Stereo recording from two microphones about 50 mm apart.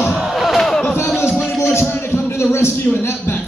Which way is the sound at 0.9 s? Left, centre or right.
Left.